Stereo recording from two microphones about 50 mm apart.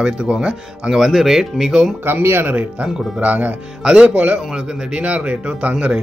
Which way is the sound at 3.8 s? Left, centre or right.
Centre.